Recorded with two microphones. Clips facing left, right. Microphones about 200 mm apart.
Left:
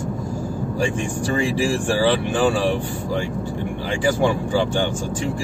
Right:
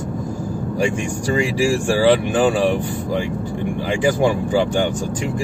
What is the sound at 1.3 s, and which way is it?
Speech, 10° right (ahead or behind).